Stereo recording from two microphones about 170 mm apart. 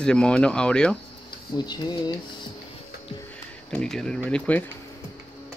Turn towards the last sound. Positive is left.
turn(degrees=5)  # may be behind; listen again after turning